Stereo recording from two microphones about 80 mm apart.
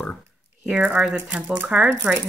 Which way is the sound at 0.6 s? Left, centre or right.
Centre.